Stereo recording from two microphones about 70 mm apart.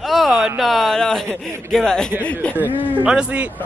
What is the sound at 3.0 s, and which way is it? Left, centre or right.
Speech, centre.